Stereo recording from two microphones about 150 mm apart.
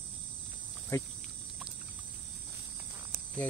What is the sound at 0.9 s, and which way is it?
Cricket, 20° left (ahead or behind).